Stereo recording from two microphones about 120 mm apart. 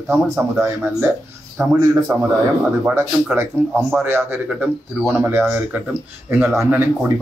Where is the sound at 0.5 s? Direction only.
20° right (ahead or behind).